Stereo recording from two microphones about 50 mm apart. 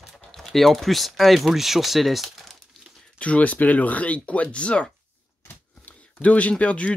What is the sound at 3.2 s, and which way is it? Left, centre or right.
Speech, left.